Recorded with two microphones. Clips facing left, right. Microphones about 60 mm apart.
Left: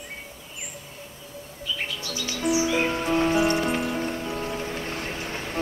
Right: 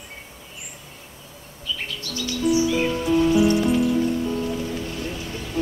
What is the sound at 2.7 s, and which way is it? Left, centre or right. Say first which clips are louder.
Music: right 2 dB; left.